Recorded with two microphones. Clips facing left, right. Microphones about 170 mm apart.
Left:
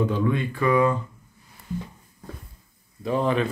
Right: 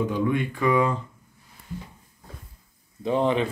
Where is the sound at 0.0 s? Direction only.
15° right (ahead or behind).